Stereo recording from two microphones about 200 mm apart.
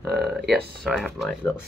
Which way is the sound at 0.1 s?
Centre (ahead or behind).